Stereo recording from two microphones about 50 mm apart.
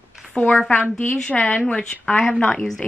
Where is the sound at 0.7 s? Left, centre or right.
Left.